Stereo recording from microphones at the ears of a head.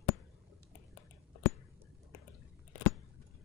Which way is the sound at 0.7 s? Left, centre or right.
Left.